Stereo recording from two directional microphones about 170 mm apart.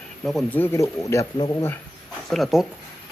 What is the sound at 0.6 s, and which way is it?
Speech, 15° left (ahead or behind).